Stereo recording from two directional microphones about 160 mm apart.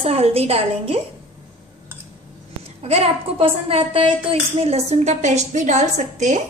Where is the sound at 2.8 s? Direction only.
40° right (ahead or behind).